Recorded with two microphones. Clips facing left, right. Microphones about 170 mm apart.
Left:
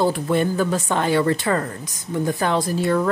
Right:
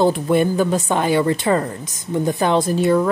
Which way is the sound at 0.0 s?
15° right (ahead or behind).